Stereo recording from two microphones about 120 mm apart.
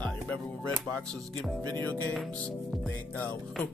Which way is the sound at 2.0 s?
10° left (ahead or behind).